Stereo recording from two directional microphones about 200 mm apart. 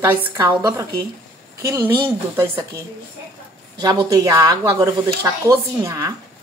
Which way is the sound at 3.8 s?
20° right (ahead or behind).